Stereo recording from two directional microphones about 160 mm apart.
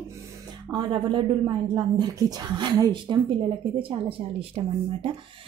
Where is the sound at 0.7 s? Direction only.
30° right (ahead or behind).